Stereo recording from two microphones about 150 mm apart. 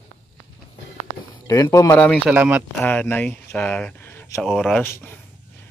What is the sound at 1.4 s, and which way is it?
Speech, 20° left (ahead or behind).